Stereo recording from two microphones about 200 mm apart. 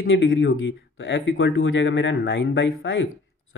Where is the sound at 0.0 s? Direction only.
55° left (ahead or behind).